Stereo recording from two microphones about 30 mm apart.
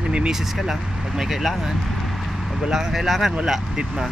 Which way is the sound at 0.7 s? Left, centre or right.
Centre.